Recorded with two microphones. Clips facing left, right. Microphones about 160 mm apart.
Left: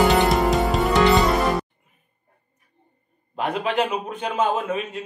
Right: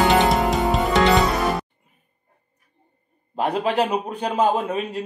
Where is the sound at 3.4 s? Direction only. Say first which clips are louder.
Right 2 dB; 35° right (ahead or behind).